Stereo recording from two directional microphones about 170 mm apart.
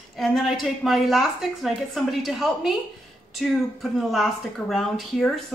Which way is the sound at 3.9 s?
Centre (ahead or behind).